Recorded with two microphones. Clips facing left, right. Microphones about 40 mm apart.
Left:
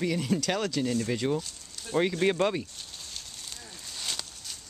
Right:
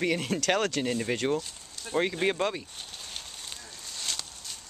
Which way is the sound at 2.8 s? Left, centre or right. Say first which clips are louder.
Right 2 dB; right.